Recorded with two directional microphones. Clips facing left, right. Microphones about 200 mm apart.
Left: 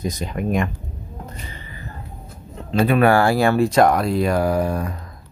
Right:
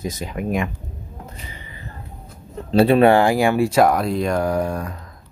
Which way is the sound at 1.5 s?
20° right (ahead or behind).